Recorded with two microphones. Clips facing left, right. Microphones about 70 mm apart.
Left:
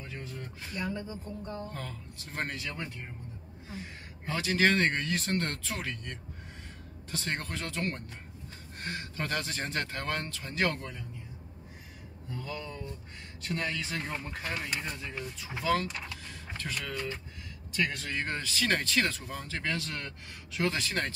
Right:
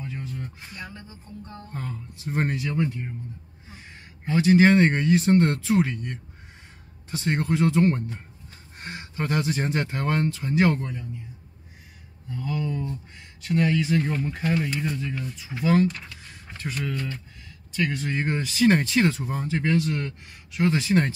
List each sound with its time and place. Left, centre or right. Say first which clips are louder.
0.0 s music: right 7 dB; centre
1.7 s speech: right 5 dB; centre
2.5 s speech: right 12 dB; centre
4.5 s speech: right 9 dB; centre
12.4 s speech: right 12 dB; centre
15.3 s speech: right 7 dB; centre
16.5 s speech: right 7 dB; centre
17.7 s speech: right 5 dB; centre
18.0 s speech: right 7 dB; centre